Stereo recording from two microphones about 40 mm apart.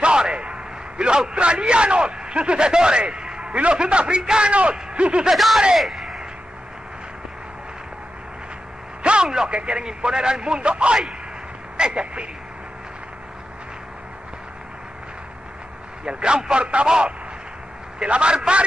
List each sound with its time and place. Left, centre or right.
0.0 s a man's voice: right
4.5 s speech: right
5.3 s speech: centre
9.0 s a sound: right
9.5 s speech: right
16.1 s speech: right